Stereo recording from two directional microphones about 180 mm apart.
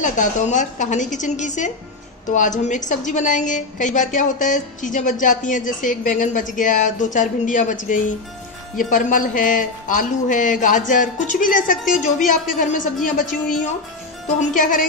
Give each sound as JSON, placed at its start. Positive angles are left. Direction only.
{"t": 0.0, "sound": "speech", "side_deg": 45}